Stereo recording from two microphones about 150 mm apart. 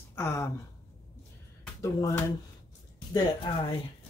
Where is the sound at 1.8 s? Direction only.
20° left (ahead or behind).